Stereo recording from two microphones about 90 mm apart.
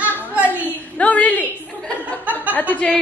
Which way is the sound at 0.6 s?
15° left (ahead or behind).